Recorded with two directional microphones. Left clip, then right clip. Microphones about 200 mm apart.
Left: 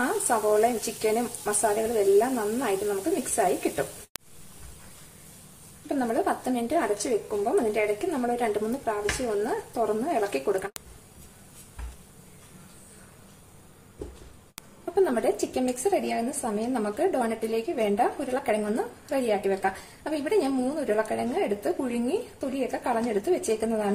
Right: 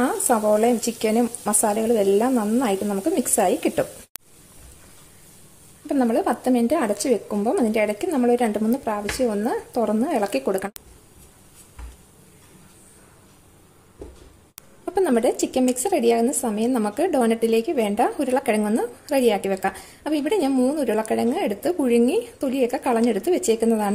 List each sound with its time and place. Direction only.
0.3 s a woman's voice: 40° right (ahead or behind)
5.9 s speech: 40° right (ahead or behind)
15.0 s a woman's voice: 45° right (ahead or behind)